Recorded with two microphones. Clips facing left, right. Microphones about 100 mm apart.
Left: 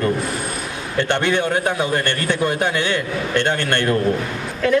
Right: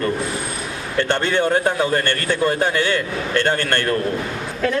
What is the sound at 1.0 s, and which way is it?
A man's voice, 20° left (ahead or behind).